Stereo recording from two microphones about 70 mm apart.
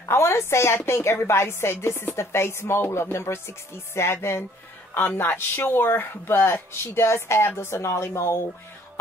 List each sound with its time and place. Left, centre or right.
0.1 s speech: left